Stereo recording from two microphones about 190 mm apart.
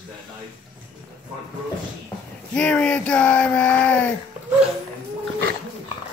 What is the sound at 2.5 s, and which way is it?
Speech, 5° left (ahead or behind).